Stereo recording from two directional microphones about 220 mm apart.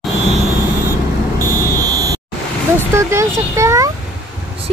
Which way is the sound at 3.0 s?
15° right (ahead or behind).